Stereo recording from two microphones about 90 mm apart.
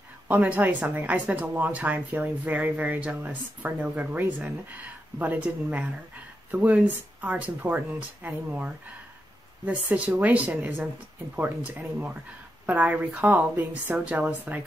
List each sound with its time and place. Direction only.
0.3 s speech: 15° right (ahead or behind)